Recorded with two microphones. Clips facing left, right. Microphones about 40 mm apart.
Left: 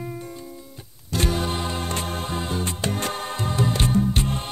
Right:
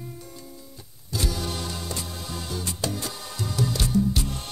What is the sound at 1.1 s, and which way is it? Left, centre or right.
Music, left.